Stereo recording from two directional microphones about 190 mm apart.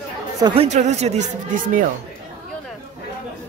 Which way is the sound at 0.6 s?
35° right (ahead or behind).